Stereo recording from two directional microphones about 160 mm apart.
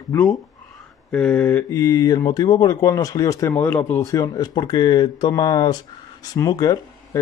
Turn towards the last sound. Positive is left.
turn(degrees=25)  # may be behind; listen again after turning